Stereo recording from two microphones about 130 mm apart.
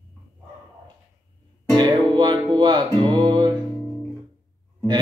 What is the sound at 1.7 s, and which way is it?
Music, 35° right (ahead or behind).